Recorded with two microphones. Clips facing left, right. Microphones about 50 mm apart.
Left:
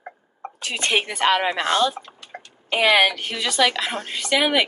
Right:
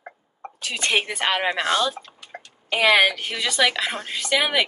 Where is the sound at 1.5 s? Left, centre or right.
Left.